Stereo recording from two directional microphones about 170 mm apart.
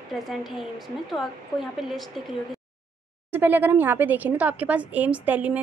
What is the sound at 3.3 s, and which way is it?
Speech, 10° right (ahead or behind).